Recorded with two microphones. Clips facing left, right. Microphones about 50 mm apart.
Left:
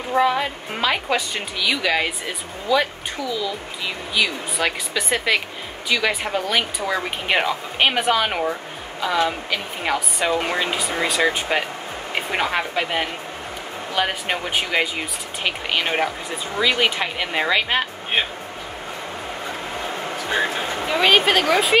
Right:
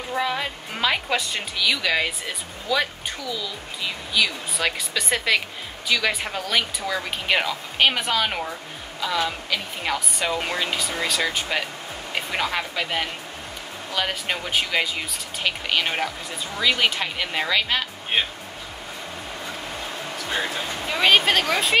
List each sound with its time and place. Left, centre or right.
0.1 s a woman's voice: centre
0.4 s speech: centre
20.2 s music: left
21.3 s speech: centre